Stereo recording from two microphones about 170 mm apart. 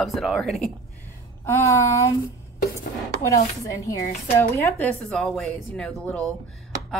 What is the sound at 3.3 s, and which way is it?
Dishes, 20° left (ahead or behind).